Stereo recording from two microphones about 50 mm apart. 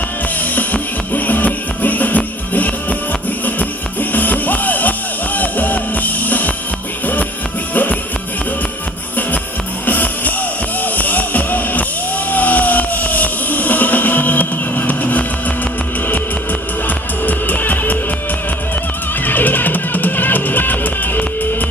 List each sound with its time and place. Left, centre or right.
0.6 s music: left
7.7 s music: left
9.8 s music: left
12.3 s vehicle: left
17.3 s music: left
19.2 s music: left